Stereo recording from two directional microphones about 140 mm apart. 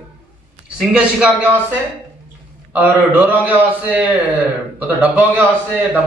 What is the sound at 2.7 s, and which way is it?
A man's voice, 15° right (ahead or behind).